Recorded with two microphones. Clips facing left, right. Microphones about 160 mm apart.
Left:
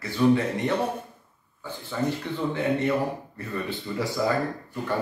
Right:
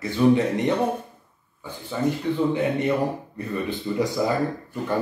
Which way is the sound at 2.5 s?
15° right (ahead or behind).